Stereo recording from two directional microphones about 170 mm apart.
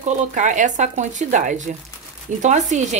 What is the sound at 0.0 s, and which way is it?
Speech, 50° right (ahead or behind).